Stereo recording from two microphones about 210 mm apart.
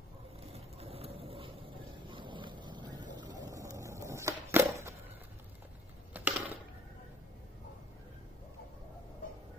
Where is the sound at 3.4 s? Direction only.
15° right (ahead or behind).